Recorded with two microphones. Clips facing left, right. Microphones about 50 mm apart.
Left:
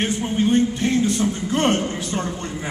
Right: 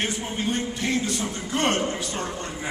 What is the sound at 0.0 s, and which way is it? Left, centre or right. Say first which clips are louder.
Speech: left 6 dB; left.